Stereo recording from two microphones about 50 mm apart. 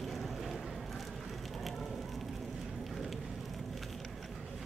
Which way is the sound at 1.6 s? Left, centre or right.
Centre.